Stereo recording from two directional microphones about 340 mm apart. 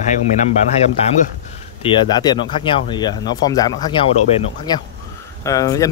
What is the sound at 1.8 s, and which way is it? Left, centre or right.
Speech, centre.